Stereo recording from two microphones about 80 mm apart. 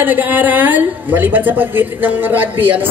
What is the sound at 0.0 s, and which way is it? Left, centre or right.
A woman's voice, right.